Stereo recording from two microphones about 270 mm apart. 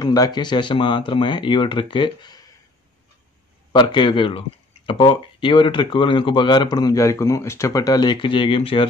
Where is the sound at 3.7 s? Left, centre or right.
Centre.